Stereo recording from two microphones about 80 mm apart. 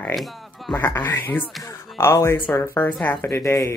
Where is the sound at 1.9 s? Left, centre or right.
Left.